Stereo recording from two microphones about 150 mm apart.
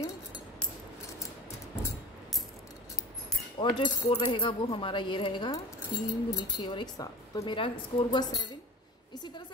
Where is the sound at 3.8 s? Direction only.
30° left (ahead or behind).